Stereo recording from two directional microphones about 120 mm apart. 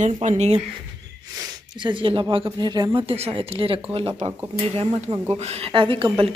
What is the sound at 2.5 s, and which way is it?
Speech, 35° right (ahead or behind).